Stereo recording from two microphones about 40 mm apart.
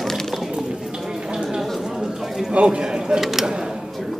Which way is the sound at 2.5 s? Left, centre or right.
Right.